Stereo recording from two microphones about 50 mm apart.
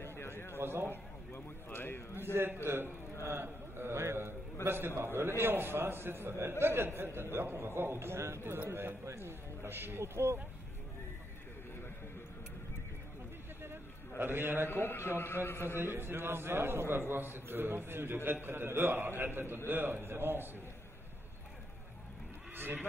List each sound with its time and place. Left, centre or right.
0.0 s a sound: left
0.6 s a man's voice: right
0.8 s a sound: left
2.3 s a man's voice: right
3.2 s mantra: right
4.6 s a man's voice: right
13.6 s a sound: right
14.7 s speech: left
15.8 s a man's voice: right
22.6 s speech: right